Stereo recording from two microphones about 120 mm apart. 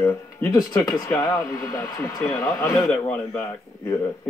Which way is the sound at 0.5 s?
30° left (ahead or behind).